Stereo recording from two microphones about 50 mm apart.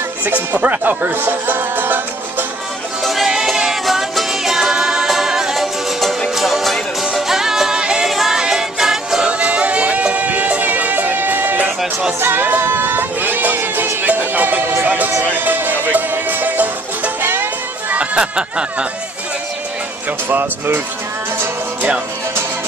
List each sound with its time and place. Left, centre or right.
0.5 s speech: right
1.1 s music: right
3.0 s music: centre
9.3 s music: right
17.9 s a sound: centre
20.2 s speech: right